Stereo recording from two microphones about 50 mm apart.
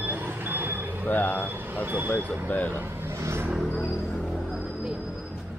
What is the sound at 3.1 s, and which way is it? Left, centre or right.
Vehicle, right.